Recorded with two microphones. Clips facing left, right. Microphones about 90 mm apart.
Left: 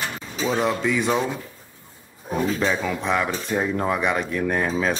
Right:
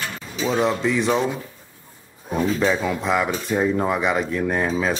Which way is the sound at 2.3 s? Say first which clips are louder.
Right 2 dB; centre (ahead or behind).